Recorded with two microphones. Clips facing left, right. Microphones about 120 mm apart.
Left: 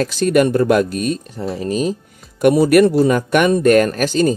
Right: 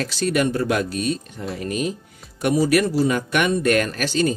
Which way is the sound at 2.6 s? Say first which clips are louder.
Left 7 dB; 60° left (ahead or behind).